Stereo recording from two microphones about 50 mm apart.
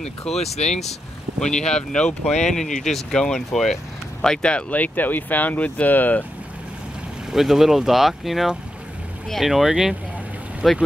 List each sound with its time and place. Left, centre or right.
0.0 s speech: centre; by 6.2 s left
7.2 s speech: centre